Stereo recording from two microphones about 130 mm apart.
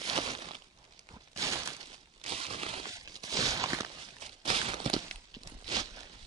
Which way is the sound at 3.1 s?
30° right (ahead or behind).